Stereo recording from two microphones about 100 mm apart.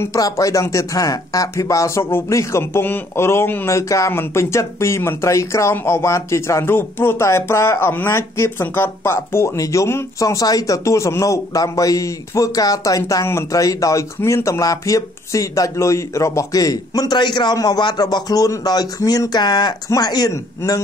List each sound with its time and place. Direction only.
0.0 s speech: 35° left (ahead or behind)